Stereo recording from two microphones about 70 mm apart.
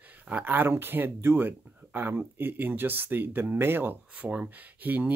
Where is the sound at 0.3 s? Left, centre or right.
Right.